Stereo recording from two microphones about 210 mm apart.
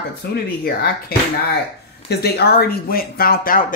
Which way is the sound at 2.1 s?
50° left (ahead or behind).